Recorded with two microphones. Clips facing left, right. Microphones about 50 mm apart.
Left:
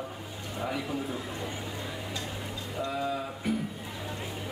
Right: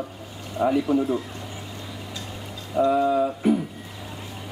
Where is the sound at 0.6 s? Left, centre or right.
Centre.